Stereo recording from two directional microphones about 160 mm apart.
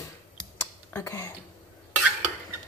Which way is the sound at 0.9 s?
20° left (ahead or behind).